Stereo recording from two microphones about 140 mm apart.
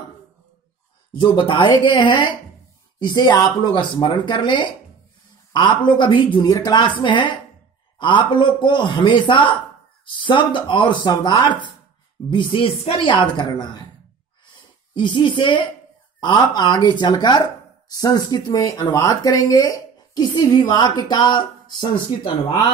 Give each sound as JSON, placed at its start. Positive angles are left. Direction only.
{"t": 1.1, "sound": "speech", "side_deg": 35}
{"t": 15.0, "sound": "speech", "side_deg": 35}